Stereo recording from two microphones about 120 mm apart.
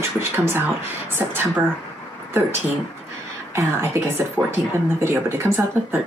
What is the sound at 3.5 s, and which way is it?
Speech, 20° right (ahead or behind).